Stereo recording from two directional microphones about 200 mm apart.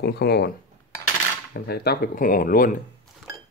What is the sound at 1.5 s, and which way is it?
Speech, 50° left (ahead or behind).